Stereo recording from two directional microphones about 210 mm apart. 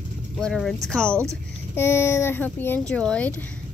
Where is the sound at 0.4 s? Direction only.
Centre (ahead or behind).